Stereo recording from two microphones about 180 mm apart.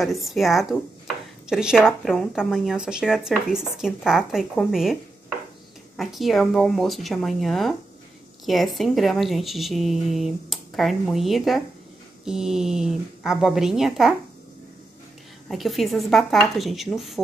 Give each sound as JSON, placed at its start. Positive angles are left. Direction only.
{"t": 0.0, "sound": "speech", "side_deg": 0}
{"t": 5.9, "sound": "speech", "side_deg": 0}
{"t": 15.4, "sound": "speech", "side_deg": 0}